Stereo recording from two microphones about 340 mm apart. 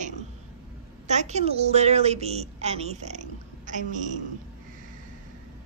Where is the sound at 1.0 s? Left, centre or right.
Centre.